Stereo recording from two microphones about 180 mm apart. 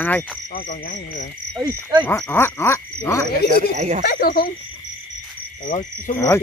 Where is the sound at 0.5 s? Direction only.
50° left (ahead or behind).